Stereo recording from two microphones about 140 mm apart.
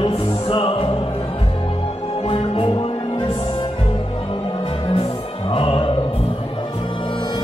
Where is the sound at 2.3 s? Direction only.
40° left (ahead or behind).